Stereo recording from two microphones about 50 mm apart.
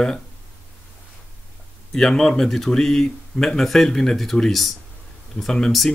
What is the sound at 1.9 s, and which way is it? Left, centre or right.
Speech, centre.